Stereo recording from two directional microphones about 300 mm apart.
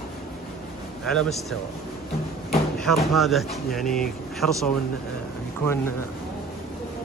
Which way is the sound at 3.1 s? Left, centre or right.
Centre.